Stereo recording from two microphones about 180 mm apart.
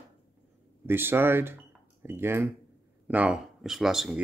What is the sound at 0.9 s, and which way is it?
Speech, 10° right (ahead or behind).